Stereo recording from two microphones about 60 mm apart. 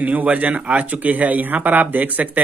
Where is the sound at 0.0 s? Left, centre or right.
Right.